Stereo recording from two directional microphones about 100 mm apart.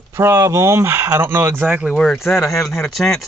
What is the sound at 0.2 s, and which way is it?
Speech, 30° right (ahead or behind).